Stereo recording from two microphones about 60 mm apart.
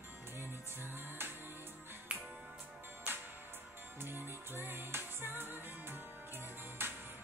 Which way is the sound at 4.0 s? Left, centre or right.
Right.